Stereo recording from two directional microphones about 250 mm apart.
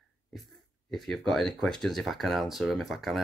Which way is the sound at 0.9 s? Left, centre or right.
Centre.